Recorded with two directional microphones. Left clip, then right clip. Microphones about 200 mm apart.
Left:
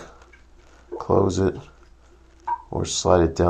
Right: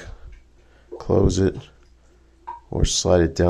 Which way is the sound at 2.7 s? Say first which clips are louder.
Right 1 dB; 35° right (ahead or behind).